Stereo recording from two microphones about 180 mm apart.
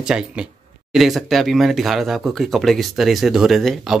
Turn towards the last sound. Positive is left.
turn(degrees=0)  # may be behind; listen again after turning